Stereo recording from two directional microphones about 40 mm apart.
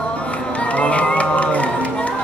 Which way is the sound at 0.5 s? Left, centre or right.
Left.